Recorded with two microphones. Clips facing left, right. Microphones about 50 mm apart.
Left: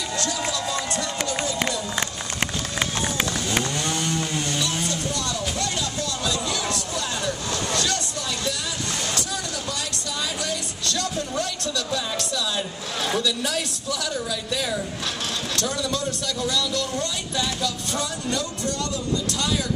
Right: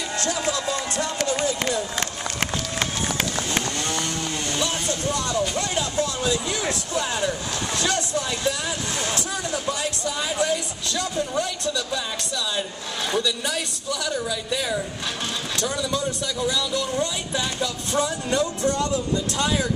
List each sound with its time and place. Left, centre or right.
0.2 s run: right
2.8 s run: centre
3.8 s chainsaw: centre
5.6 s a sound: right
10.4 s a sound: centre
13.1 s speech: centre
17.6 s music: right